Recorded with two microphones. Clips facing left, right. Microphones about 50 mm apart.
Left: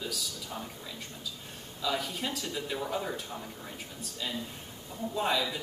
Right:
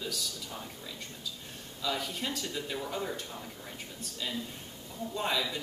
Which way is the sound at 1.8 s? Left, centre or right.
Centre.